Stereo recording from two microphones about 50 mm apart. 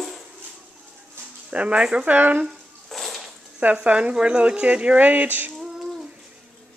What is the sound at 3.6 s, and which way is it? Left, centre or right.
Speech, right.